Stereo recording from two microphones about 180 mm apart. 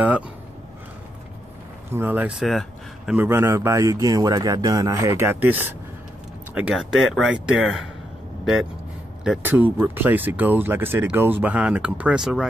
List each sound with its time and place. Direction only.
1.9 s speech: 10° right (ahead or behind)
9.2 s speech: 5° right (ahead or behind)